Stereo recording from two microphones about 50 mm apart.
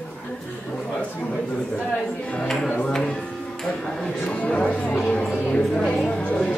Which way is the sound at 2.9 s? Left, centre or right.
Centre.